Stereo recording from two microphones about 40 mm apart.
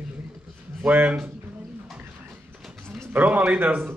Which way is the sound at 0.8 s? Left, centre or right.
Right.